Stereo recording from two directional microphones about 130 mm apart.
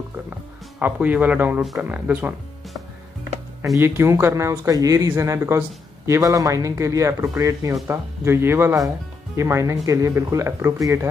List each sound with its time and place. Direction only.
0.3 s speech: 10° right (ahead or behind)
1.6 s speech: centre (ahead or behind)
1.9 s speech: 10° right (ahead or behind)
3.7 s speech: 20° right (ahead or behind)